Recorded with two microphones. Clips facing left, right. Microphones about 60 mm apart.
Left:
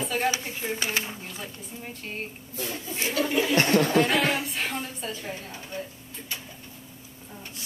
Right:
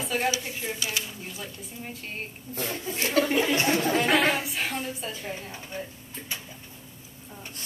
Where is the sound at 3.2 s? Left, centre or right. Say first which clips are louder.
Right 1 dB; right.